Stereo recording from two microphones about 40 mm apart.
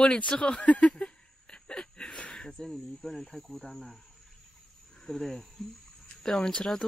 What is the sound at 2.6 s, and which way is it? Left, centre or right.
Speech, centre.